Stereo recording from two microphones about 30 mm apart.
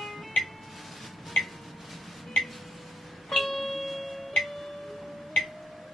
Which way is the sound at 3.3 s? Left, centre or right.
Centre.